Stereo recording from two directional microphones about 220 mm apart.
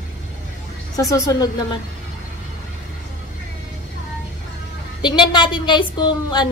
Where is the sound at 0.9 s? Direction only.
15° left (ahead or behind).